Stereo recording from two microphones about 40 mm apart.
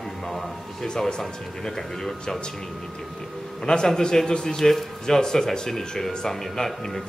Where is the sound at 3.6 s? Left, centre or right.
Centre.